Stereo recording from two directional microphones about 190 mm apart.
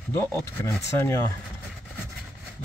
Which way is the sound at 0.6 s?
15° left (ahead or behind).